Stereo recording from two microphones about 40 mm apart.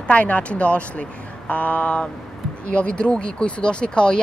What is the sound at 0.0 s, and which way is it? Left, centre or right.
Speech, left.